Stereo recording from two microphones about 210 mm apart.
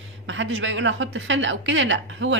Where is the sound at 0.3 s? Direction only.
60° right (ahead or behind).